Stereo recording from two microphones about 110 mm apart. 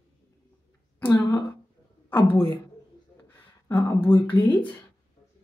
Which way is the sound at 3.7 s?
20° left (ahead or behind).